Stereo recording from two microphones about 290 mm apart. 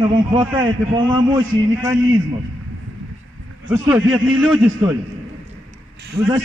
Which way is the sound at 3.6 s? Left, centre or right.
Centre.